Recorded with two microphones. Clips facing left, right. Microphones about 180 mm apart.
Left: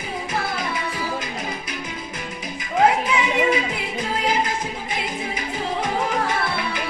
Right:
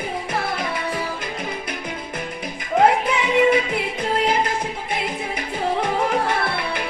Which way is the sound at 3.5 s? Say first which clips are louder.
Right 3 dB; 60° right (ahead or behind).